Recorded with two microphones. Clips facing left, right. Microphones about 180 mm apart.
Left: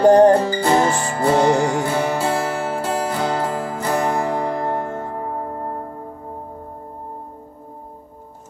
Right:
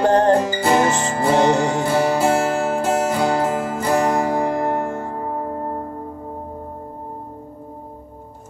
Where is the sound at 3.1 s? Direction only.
10° right (ahead or behind).